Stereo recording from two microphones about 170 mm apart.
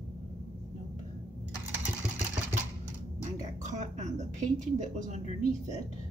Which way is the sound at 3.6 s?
45° right (ahead or behind).